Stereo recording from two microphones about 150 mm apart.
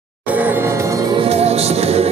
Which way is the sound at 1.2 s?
45° right (ahead or behind).